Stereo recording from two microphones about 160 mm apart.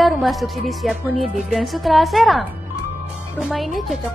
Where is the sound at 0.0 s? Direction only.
Centre (ahead or behind).